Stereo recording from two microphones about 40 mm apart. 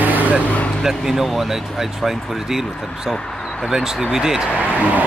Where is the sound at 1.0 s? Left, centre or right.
Centre.